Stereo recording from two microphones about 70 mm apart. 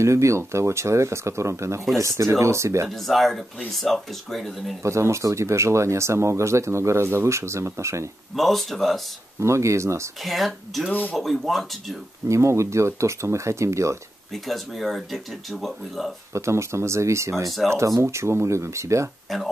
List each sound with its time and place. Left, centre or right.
0.0 s speech: right
2.9 s speech: centre
4.8 s speech: right
8.4 s speech: centre
9.4 s speech: right
10.2 s speech: centre
10.9 s speech: left
11.1 s speech: centre
12.3 s speech: right
14.3 s speech: centre
16.3 s speech: right